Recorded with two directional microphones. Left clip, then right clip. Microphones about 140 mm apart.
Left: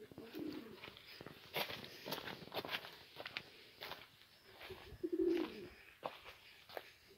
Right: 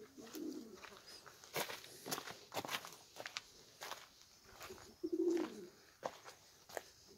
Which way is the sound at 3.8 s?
30° right (ahead or behind).